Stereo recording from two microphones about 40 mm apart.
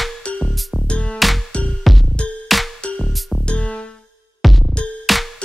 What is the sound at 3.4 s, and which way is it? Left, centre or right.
Music, left.